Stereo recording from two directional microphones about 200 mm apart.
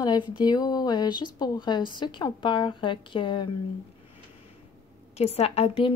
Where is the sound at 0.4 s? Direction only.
20° left (ahead or behind).